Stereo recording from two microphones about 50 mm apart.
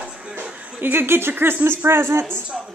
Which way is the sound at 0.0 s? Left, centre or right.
Right.